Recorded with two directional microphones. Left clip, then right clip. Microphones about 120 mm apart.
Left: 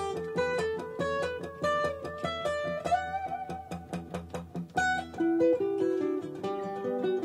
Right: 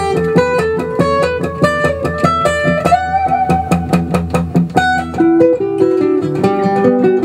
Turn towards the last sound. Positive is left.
turn(degrees=20)  # may be behind; listen again after turning